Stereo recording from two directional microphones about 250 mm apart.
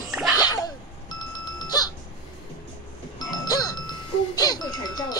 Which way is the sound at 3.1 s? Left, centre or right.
Centre.